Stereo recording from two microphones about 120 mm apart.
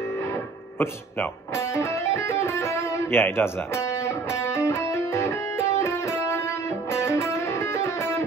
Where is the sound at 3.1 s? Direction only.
20° left (ahead or behind).